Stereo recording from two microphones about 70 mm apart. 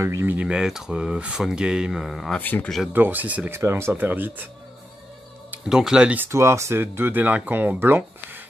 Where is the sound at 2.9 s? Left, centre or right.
Right.